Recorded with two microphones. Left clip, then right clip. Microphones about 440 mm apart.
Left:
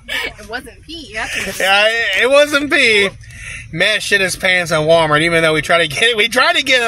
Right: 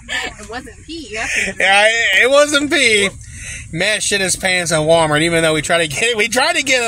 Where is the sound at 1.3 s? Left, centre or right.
Left.